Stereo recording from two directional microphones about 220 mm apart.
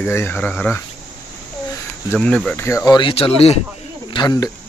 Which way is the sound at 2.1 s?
5° left (ahead or behind).